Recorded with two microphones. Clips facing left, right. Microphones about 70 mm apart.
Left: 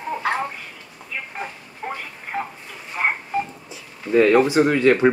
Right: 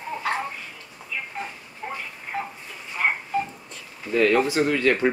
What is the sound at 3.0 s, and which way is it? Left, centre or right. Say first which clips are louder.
Telephone dialing: left 2 dB; left.